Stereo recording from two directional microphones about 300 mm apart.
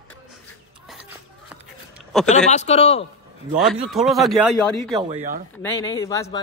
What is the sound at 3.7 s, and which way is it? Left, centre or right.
Speech, centre.